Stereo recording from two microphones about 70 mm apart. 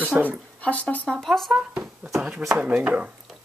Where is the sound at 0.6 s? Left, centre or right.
Left.